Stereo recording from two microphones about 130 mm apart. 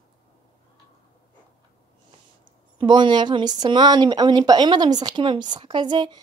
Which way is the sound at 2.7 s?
40° right (ahead or behind).